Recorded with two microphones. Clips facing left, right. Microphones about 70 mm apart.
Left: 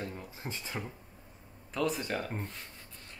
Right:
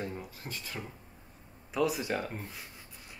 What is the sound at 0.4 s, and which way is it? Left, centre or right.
Speech, left.